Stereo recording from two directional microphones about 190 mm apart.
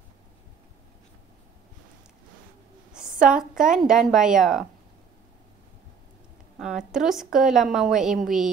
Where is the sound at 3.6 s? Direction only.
5° right (ahead or behind).